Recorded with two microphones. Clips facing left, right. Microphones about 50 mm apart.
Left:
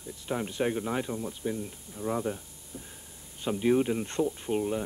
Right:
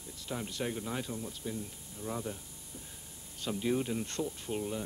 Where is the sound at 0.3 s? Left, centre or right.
Left.